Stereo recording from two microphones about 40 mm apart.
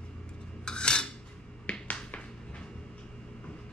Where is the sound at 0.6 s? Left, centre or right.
Left.